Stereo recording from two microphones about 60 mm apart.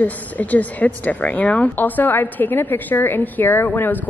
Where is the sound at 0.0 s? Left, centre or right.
Left.